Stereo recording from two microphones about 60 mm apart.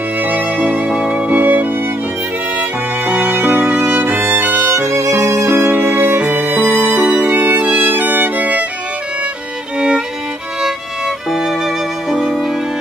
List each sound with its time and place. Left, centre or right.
0.2 s music: right
3.1 s music: right
4.6 s music: right
5.5 s music: right
9.8 s music: centre
11.2 s music: centre